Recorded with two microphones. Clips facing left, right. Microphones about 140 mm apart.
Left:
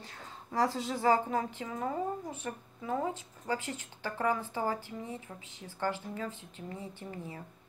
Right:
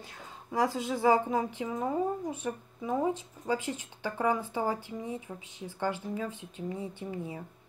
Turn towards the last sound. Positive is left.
turn(degrees=-15)  # may be behind; listen again after turning